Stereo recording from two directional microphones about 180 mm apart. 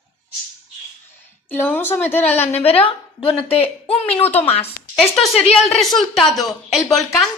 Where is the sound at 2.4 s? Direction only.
35° left (ahead or behind).